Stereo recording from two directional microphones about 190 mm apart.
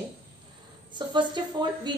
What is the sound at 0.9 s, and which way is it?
A woman's voice, 25° right (ahead or behind).